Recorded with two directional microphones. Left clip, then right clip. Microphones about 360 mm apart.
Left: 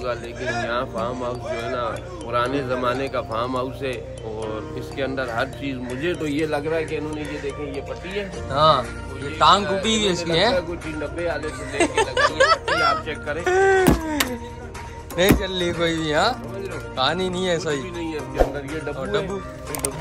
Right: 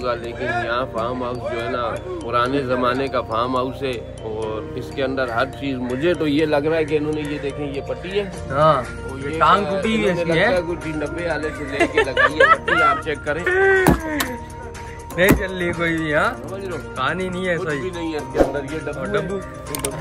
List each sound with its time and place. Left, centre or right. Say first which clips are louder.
0.0 s speech: right 3 dB; centre; by 8.3 s right
8.5 s speech: right 1 dB; centre
11.1 s speech: even; right
11.8 s speech: right 2 dB; centre
13.0 s speech: right 4 dB; right
13.5 s speech: right 1 dB; centre